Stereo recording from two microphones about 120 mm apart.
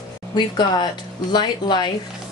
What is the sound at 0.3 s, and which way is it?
A woman's voice, 40° left (ahead or behind).